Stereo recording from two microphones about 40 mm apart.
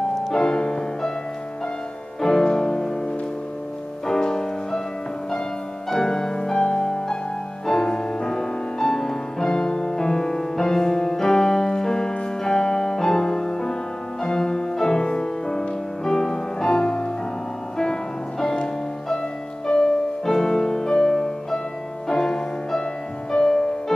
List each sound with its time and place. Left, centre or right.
0.1 s music: centre
0.4 s music: centre
2.2 s music: centre
4.1 s music: centre
5.9 s music: centre
18.4 s music: centre